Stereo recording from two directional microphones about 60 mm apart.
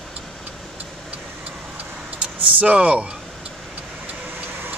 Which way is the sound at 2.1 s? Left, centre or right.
Right.